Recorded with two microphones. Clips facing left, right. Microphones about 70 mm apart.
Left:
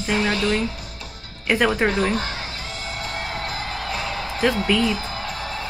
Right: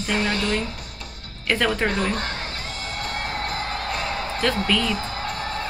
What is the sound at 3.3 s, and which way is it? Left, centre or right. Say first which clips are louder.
Music: right 1 dB; right.